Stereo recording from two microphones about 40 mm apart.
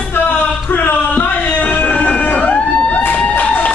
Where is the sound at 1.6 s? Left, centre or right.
Left.